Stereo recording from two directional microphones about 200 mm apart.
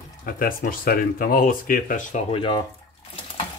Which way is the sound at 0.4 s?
45° left (ahead or behind).